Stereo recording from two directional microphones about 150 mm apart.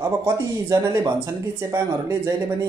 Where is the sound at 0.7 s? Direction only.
25° right (ahead or behind).